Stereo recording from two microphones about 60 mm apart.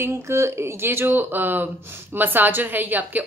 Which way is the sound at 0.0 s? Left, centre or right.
Right.